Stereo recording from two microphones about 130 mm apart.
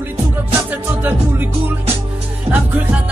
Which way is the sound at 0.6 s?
15° right (ahead or behind).